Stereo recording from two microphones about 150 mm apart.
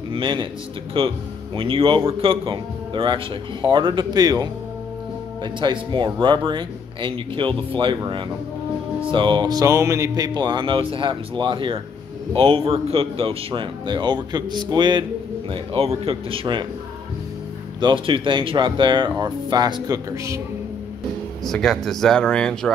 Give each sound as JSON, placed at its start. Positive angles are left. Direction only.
{"t": 0.1, "sound": "speech", "side_deg": -35}
{"t": 18.0, "sound": "speech", "side_deg": -35}
{"t": 21.5, "sound": "speech", "side_deg": 5}